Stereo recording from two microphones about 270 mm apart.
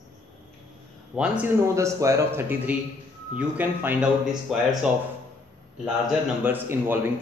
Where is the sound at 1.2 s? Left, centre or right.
Centre.